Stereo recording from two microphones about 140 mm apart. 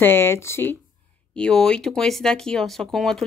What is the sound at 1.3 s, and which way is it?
Speech, 5° left (ahead or behind).